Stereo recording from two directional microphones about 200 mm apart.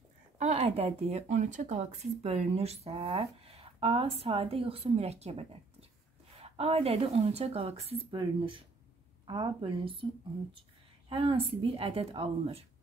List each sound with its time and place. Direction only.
0.4 s speech: 35° right (ahead or behind)
11.1 s speech: 25° right (ahead or behind)